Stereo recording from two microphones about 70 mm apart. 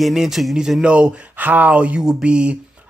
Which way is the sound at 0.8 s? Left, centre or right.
Centre.